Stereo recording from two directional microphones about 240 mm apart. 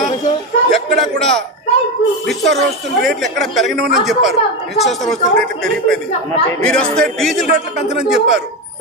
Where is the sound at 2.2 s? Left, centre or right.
Centre.